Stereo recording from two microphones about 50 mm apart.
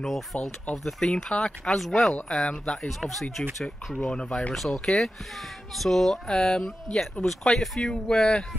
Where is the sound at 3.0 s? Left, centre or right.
Centre.